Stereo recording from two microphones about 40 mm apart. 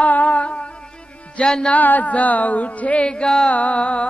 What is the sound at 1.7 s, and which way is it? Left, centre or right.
Music, left.